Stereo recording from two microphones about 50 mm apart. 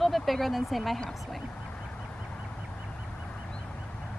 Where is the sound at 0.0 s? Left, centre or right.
Centre.